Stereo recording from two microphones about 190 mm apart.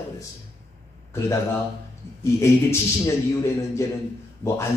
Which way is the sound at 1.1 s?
15° left (ahead or behind).